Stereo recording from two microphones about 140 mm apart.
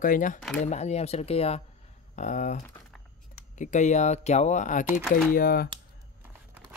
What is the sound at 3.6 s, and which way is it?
Speech, 60° left (ahead or behind).